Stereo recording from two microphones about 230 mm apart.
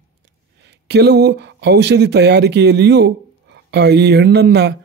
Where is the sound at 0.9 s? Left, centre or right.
Right.